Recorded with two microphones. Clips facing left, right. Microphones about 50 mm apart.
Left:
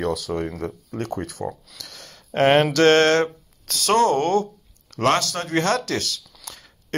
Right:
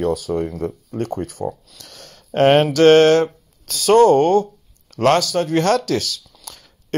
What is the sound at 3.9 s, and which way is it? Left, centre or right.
Speech, right.